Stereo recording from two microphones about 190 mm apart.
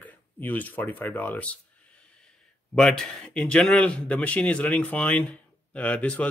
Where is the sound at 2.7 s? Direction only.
5° left (ahead or behind).